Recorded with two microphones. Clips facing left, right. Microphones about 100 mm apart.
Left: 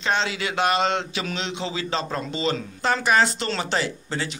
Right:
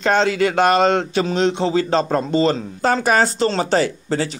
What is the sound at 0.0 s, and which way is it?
Speech, 45° right (ahead or behind).